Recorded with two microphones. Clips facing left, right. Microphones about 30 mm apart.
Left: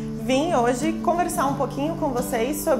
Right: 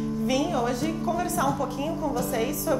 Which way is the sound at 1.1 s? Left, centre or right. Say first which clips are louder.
Left 4 dB; left.